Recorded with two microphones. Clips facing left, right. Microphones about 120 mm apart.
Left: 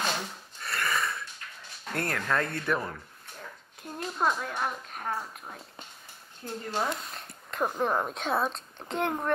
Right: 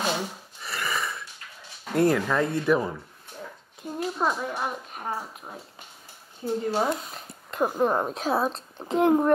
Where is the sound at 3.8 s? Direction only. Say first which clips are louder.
Right 4 dB; 5° right (ahead or behind).